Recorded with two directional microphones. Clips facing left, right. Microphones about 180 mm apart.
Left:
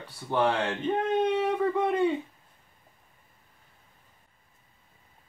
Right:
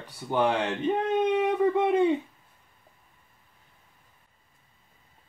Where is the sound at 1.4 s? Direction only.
20° right (ahead or behind).